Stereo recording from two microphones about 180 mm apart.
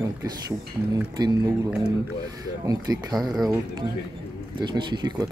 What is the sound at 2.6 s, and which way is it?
Speech, 20° right (ahead or behind).